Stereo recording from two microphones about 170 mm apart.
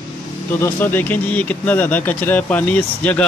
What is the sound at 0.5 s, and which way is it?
A man's voice, 10° left (ahead or behind).